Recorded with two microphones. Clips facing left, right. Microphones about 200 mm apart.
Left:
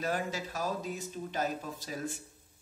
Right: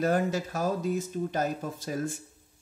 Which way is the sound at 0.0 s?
45° right (ahead or behind).